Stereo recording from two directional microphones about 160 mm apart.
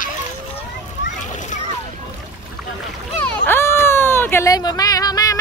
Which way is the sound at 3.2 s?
15° left (ahead or behind).